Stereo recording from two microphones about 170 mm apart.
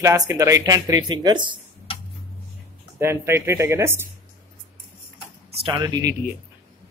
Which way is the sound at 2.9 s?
15° right (ahead or behind).